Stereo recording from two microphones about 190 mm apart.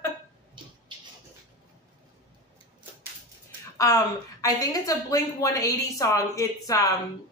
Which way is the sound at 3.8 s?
15° left (ahead or behind).